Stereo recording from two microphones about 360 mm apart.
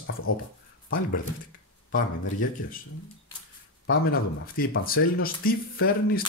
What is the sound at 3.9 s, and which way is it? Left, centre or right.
Speech, left.